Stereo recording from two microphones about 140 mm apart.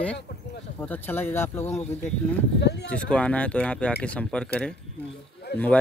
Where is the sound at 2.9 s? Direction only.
10° left (ahead or behind).